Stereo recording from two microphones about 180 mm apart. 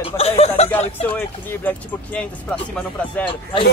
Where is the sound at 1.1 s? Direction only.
10° left (ahead or behind).